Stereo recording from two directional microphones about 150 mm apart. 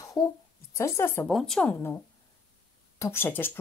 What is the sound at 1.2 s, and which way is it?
Speech, centre (ahead or behind).